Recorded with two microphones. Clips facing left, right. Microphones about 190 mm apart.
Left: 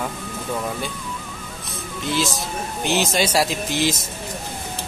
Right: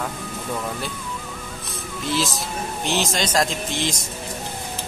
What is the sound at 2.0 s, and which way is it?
Speech, centre (ahead or behind).